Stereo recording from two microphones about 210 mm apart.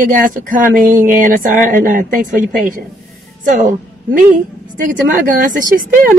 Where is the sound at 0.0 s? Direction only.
40° right (ahead or behind).